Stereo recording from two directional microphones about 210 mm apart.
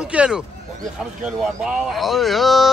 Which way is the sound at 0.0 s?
5° right (ahead or behind).